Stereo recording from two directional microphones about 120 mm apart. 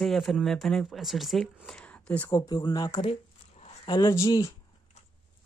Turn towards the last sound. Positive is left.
turn(degrees=25)  # may be behind; listen again after turning